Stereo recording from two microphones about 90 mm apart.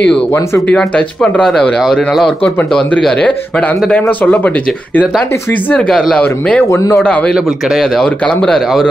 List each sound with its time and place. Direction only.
0.3 s speech: 30° left (ahead or behind)
0.7 s speech: 15° left (ahead or behind)
5.5 s speech: 15° left (ahead or behind)
6.6 s speech: 35° left (ahead or behind)
7.8 s speech: 10° left (ahead or behind)